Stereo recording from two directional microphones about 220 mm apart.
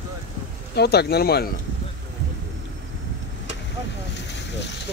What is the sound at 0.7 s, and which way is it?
Speech, 50° left (ahead or behind).